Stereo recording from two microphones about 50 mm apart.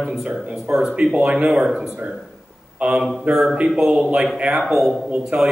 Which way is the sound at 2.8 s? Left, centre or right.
Right.